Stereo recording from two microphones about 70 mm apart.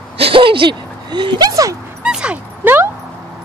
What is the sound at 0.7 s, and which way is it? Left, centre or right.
Speech, right.